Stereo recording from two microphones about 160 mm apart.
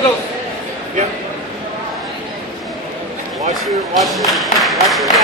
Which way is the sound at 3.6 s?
Centre (ahead or behind).